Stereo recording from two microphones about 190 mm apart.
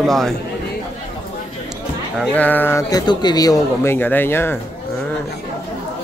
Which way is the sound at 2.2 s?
10° left (ahead or behind).